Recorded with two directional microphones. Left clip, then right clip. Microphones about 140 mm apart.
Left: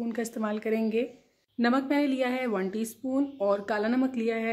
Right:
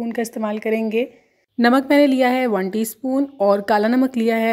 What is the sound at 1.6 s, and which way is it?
A woman's voice, 55° right (ahead or behind).